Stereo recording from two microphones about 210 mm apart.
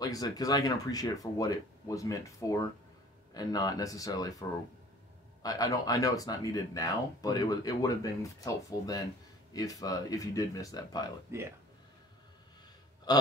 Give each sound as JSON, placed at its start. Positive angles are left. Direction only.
{"t": 0.0, "sound": "speech", "side_deg": 15}
{"t": 11.3, "sound": "speech", "side_deg": -10}
{"t": 13.1, "sound": "burping", "side_deg": 20}